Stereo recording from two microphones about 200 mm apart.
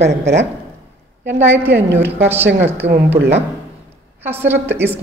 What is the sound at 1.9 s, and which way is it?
Speech, 10° right (ahead or behind).